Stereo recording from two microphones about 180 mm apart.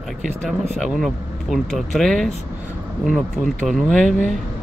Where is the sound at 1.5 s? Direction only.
Centre (ahead or behind).